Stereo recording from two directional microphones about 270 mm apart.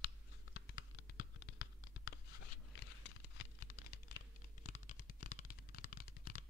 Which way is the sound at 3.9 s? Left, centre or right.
Left.